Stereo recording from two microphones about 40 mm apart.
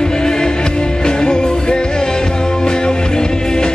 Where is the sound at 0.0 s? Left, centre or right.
Centre.